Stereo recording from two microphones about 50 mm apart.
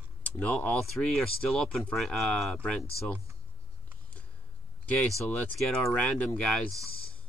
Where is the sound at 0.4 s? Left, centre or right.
Left.